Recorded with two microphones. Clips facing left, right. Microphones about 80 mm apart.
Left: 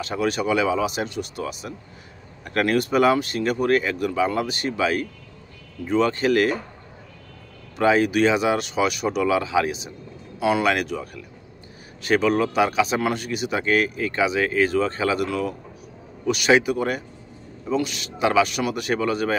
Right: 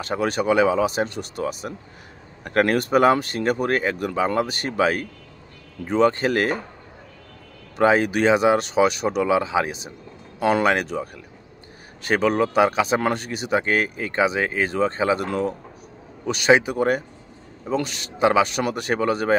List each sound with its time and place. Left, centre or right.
0.0 s speech: right
7.7 s speech: right